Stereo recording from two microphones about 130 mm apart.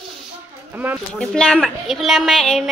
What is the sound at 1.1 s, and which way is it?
A woman's voice, 5° left (ahead or behind).